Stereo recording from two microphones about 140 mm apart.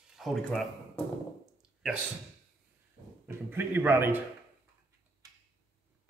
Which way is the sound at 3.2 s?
15° right (ahead or behind).